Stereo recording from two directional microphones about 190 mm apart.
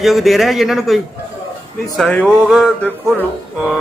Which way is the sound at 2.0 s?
5° left (ahead or behind).